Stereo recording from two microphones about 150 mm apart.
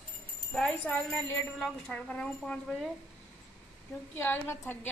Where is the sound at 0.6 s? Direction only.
5° left (ahead or behind).